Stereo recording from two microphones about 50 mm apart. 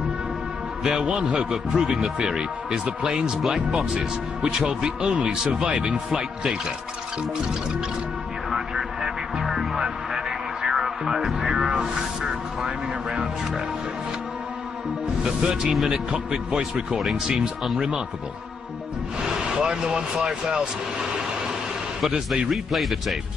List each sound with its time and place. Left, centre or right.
0.8 s a man's voice: centre
1.5 s speech: centre
3.3 s speech: centre
3.7 s a man's voice: right
8.5 s music: centre
11.1 s speech: centre
11.5 s music: right
11.8 s speech: centre
15.2 s a man's voice: centre
19.2 s speech: centre